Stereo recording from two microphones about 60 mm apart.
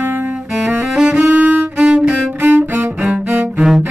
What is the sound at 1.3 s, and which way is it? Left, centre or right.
Music, right.